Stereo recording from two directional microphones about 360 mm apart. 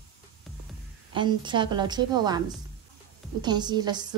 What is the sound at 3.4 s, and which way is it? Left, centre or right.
Speech, centre.